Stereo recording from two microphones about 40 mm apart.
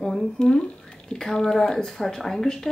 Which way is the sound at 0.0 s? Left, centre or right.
Centre.